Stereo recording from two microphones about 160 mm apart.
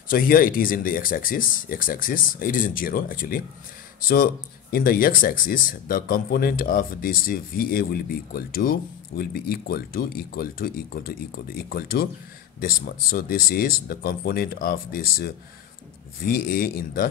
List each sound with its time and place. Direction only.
0.1 s speech: 65° left (ahead or behind)